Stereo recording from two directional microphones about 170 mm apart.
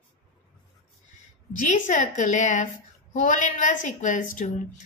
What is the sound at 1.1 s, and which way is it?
A woman's voice, 45° left (ahead or behind).